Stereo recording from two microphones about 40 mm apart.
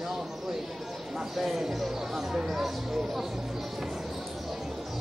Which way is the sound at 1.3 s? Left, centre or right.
Centre.